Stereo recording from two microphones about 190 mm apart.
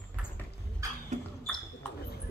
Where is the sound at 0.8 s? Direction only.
15° right (ahead or behind).